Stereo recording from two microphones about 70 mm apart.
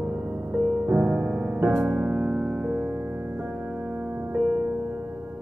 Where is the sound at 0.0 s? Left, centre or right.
Right.